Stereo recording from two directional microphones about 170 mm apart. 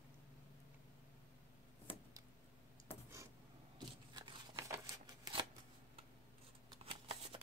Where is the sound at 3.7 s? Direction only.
25° right (ahead or behind).